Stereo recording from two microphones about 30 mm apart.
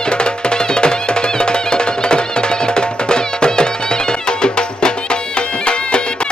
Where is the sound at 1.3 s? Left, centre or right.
Left.